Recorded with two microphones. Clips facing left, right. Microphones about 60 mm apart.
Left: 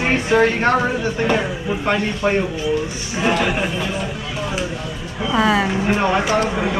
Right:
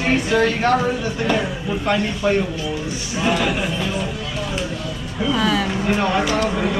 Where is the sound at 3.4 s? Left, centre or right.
Centre.